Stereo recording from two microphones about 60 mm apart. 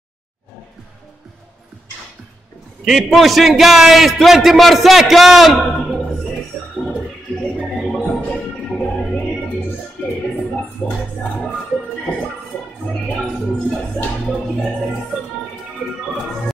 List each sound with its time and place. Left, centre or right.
2.8 s a man's voice: centre
10.0 s music: centre